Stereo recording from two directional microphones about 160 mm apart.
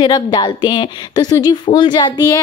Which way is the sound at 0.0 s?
25° left (ahead or behind).